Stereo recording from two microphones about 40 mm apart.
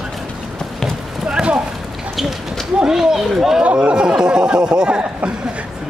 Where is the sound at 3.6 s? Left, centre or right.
Right.